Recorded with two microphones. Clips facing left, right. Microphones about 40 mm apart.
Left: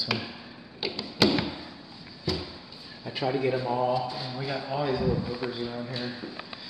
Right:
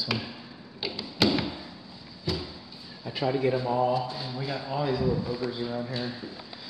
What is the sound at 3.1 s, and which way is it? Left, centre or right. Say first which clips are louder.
Speech: right 1 dB; centre.